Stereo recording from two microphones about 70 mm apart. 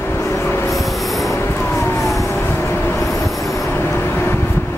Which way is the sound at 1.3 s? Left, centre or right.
Left.